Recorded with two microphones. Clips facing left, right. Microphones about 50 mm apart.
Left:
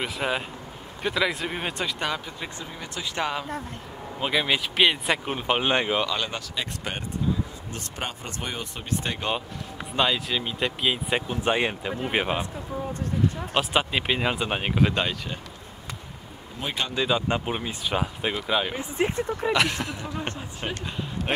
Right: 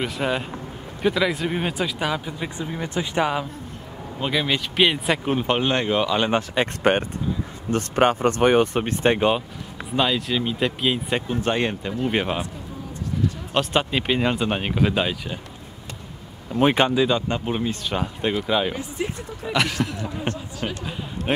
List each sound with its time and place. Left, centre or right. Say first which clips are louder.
0.0 s speech: right 3 dB; centre; by 3.3 s right
4.2 s speech: right 1 dB; centre
5.6 s speech: right 2 dB; centre
6.1 s speech: right 9 dB; right
6.5 s speech: right 12 dB; right
9.9 s speech: right 3 dB; centre
13.5 s speech: right 5 dB; centre
17.3 s speech: right 3 dB; centre
18.8 s speech: left 3 dB; left
19.8 s speech: right 4 dB; centre